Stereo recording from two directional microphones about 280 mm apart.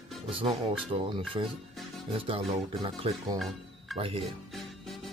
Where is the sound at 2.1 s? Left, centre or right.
Centre.